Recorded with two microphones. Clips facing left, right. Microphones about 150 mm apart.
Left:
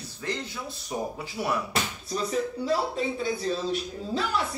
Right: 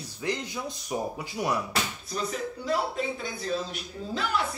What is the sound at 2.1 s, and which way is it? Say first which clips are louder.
A man's voice: left 4 dB; 30° left (ahead or behind).